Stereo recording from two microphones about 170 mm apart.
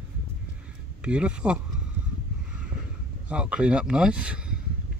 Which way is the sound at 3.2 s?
5° right (ahead or behind).